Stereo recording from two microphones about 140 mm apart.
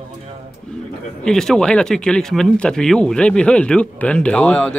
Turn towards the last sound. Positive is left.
turn(degrees=5)  # may be behind; listen again after turning